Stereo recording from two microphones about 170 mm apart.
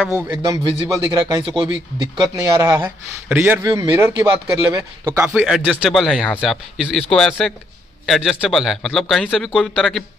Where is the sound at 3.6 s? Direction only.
25° right (ahead or behind).